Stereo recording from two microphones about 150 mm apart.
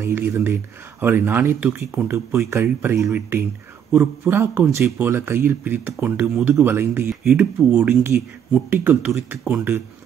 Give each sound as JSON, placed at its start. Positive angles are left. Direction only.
{"t": 0.0, "sound": "speech", "side_deg": -15}